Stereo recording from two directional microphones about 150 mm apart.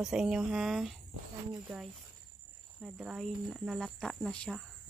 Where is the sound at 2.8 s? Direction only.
5° right (ahead or behind).